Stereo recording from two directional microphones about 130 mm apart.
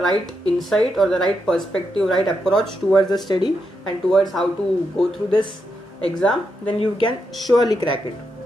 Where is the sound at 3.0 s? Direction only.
30° left (ahead or behind).